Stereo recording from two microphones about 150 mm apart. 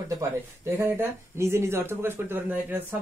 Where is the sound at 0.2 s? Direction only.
15° right (ahead or behind).